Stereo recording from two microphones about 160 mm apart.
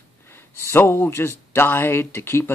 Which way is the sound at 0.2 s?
15° left (ahead or behind).